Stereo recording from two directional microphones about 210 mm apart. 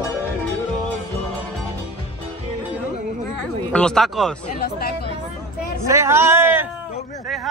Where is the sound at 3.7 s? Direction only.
5° left (ahead or behind).